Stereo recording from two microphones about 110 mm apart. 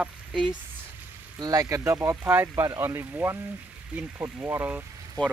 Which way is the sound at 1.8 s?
20° right (ahead or behind).